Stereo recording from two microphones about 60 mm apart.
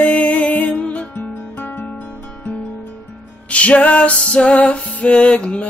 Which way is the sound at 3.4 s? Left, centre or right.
Left.